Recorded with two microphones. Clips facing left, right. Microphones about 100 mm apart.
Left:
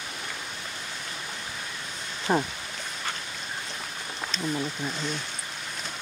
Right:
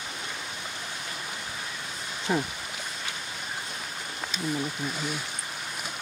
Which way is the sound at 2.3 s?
40° left (ahead or behind).